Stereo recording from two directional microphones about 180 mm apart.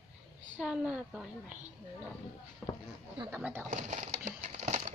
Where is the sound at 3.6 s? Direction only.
45° right (ahead or behind).